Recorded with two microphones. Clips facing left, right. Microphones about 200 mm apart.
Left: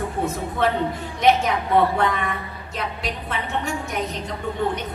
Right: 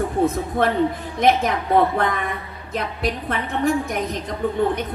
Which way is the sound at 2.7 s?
55° right (ahead or behind).